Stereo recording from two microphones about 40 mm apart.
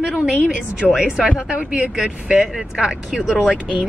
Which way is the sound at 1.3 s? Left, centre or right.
Right.